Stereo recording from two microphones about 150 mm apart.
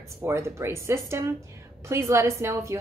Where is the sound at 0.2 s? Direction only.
15° right (ahead or behind).